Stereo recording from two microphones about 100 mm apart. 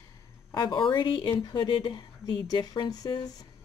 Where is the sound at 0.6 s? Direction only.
55° left (ahead or behind).